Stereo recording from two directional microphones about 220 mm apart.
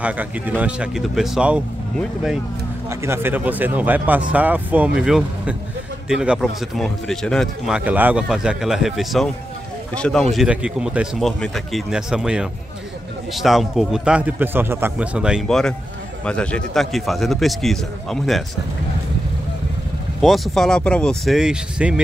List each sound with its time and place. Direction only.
0.0 s speech: 5° right (ahead or behind)
20.2 s speech: centre (ahead or behind)